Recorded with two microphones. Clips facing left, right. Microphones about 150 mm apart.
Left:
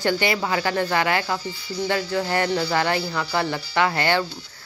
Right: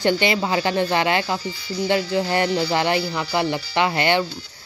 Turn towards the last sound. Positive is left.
turn(degrees=-20)  # may be behind; listen again after turning